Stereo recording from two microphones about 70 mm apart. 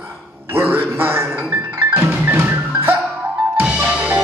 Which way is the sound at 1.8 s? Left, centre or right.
Right.